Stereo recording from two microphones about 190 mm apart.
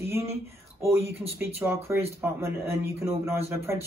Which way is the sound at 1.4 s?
10° right (ahead or behind).